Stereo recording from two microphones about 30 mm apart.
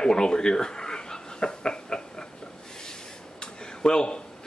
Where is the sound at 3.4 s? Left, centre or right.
Left.